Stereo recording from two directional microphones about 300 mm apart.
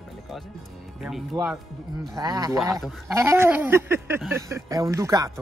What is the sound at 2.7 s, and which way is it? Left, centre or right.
Speech, centre.